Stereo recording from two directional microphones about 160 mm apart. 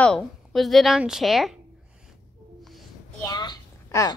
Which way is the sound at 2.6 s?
Centre (ahead or behind).